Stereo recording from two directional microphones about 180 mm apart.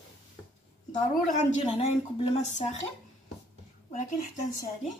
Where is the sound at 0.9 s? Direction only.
45° left (ahead or behind).